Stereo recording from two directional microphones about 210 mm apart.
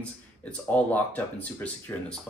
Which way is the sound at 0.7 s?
5° left (ahead or behind).